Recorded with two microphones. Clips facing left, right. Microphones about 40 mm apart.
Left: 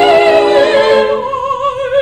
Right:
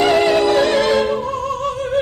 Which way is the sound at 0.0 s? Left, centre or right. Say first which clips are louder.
Left 7 dB; left.